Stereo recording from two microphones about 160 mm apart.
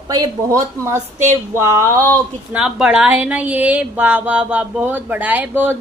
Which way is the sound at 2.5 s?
5° right (ahead or behind).